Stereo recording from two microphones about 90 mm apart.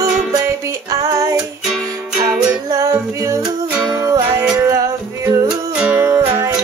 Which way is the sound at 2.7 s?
40° right (ahead or behind).